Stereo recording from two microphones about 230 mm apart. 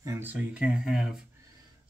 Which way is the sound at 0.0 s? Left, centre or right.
Centre.